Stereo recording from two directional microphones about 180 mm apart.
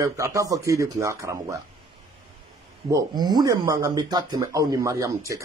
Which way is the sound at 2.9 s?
25° right (ahead or behind).